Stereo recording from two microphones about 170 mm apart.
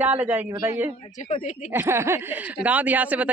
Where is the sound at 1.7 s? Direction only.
15° right (ahead or behind).